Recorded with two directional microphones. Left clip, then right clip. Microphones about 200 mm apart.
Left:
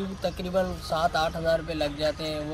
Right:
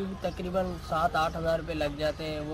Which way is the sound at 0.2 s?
Centre (ahead or behind).